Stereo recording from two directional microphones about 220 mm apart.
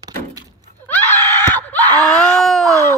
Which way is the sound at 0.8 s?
10° left (ahead or behind).